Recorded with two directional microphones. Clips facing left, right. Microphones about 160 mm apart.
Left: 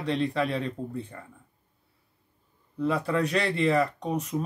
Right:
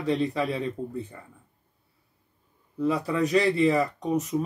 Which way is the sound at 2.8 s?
Centre (ahead or behind).